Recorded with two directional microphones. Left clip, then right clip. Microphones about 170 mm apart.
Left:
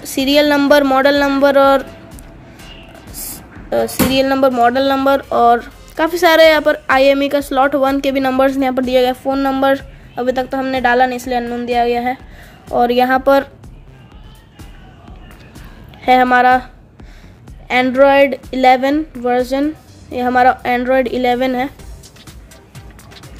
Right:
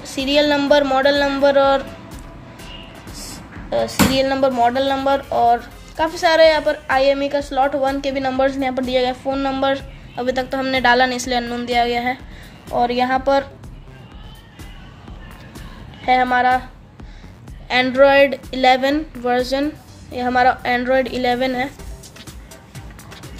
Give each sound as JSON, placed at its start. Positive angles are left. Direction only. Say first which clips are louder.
{"t": 0.0, "sound": "speech", "louder": "left 4 dB", "side_deg": 50}
{"t": 3.1, "sound": "speech", "louder": "left 2 dB", "side_deg": 45}
{"t": 12.7, "sound": "speech", "louder": "left 5 dB", "side_deg": 50}
{"t": 16.0, "sound": "speech", "louder": "left 5 dB", "side_deg": 55}
{"t": 17.6, "sound": "a woman's voice", "louder": "left 2 dB", "side_deg": 40}